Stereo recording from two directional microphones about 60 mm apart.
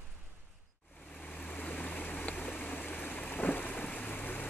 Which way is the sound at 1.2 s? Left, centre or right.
Left.